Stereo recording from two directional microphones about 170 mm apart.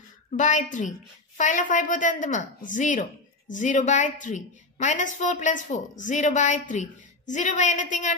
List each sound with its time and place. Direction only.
0.4 s a woman's voice: 45° left (ahead or behind)